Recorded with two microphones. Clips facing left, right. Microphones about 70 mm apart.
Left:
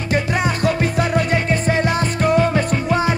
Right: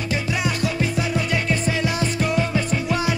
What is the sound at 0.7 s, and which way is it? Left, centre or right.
Music, left.